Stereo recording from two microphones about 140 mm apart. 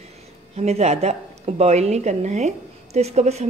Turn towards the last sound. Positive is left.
turn(degrees=-50)  # may be behind; listen again after turning